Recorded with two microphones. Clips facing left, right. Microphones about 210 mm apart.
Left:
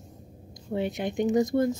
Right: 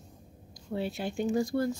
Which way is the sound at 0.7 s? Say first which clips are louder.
Left 4 dB; 20° left (ahead or behind).